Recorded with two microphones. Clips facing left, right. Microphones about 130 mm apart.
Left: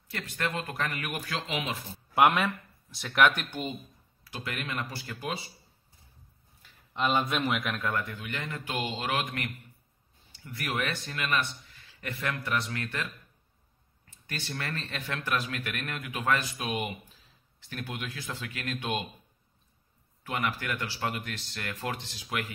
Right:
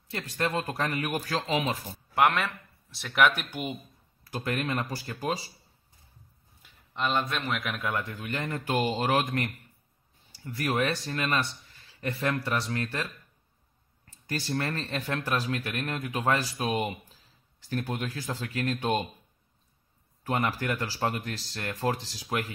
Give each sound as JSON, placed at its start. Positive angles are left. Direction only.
{"t": 0.1, "sound": "a man's voice", "side_deg": -30}
{"t": 2.1, "sound": "speech", "side_deg": 5}
{"t": 4.2, "sound": "a man's voice", "side_deg": -45}
{"t": 6.9, "sound": "speech", "side_deg": 5}
{"t": 7.6, "sound": "a man's voice", "side_deg": -10}
{"t": 8.0, "sound": "a man's voice", "side_deg": -40}
{"t": 14.2, "sound": "a man's voice", "side_deg": -35}
{"t": 20.2, "sound": "a man's voice", "side_deg": -35}